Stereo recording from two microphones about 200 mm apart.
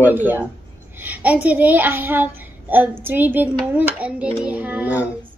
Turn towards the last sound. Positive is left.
turn(degrees=-5)  # may be behind; listen again after turning